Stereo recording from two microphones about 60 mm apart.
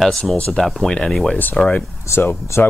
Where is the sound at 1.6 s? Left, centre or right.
Left.